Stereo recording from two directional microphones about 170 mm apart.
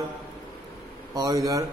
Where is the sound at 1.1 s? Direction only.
20° right (ahead or behind).